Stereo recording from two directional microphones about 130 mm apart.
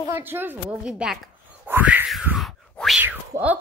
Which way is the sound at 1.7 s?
15° right (ahead or behind).